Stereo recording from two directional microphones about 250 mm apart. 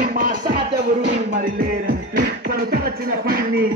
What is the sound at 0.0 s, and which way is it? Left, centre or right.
Music, right.